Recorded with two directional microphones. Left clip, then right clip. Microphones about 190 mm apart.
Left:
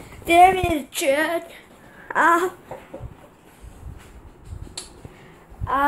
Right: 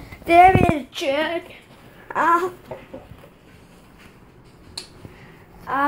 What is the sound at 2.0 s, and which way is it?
Babbling, 10° left (ahead or behind).